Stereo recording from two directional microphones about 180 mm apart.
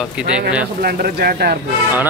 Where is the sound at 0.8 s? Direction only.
55° right (ahead or behind).